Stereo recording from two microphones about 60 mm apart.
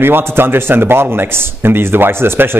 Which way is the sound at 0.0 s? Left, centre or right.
Right.